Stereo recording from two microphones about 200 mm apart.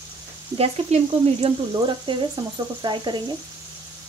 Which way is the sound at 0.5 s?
30° right (ahead or behind).